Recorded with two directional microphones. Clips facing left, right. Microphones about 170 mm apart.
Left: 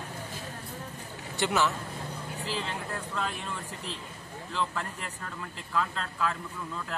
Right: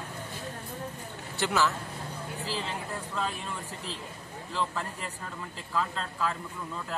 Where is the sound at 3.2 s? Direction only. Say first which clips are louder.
Right 2 dB; centre (ahead or behind).